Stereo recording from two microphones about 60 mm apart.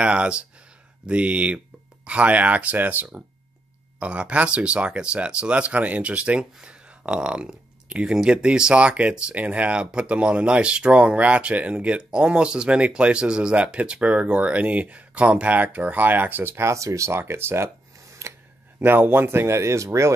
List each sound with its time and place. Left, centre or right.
0.0 s speech: centre
16.5 s speech: right
17.9 s a sound: right
18.8 s speech: right